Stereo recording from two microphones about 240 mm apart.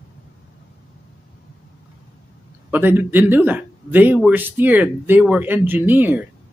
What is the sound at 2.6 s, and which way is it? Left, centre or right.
Speech, centre.